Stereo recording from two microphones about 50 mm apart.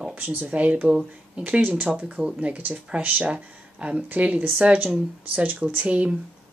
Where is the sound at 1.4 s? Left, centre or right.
Right.